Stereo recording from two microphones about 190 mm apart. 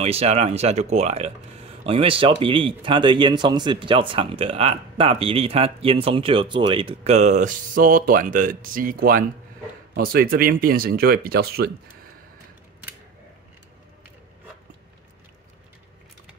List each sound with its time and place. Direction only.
0.0 s speech: 35° right (ahead or behind); by 11.7 s 55° right (ahead or behind)